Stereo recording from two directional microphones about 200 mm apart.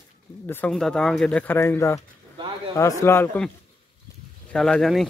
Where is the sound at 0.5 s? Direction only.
5° left (ahead or behind).